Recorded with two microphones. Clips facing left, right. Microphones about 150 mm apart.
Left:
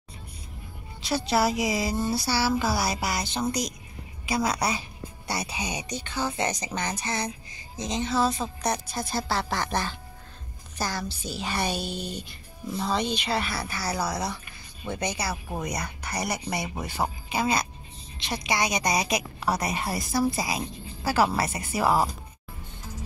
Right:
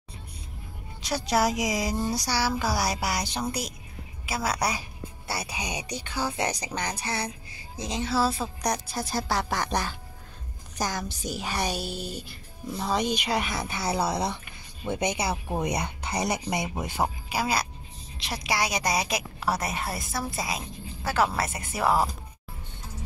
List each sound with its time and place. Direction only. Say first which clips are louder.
1.0 s speech: left 1 dB; 15° right (ahead or behind)
17.3 s a woman's voice: left 1 dB; 5° right (ahead or behind)